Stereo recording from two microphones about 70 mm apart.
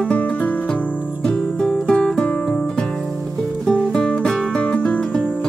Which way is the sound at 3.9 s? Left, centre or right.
Centre.